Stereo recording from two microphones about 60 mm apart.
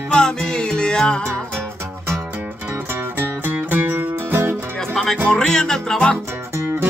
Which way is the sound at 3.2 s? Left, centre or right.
Right.